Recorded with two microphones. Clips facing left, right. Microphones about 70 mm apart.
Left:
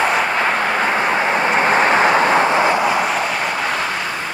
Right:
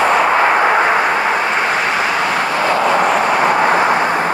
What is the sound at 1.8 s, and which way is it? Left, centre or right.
Vehicle, left.